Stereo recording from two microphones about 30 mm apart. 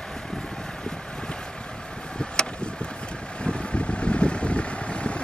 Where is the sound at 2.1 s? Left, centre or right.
Left.